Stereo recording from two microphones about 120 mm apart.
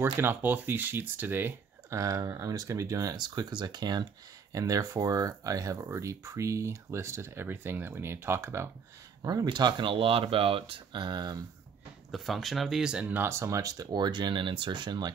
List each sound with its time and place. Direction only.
0.0 s speech: 15° right (ahead or behind)
9.2 s speech: 35° right (ahead or behind)
12.1 s speech: centre (ahead or behind); by 15.0 s 35° right (ahead or behind)